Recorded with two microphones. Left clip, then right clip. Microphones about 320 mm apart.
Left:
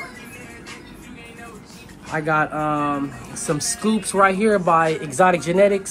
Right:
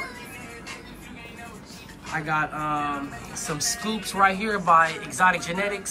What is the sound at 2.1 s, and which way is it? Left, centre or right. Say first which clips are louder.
Speech: left 6 dB; centre.